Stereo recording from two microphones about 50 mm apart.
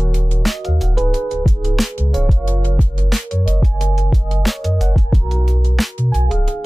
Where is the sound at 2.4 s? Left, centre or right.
Left.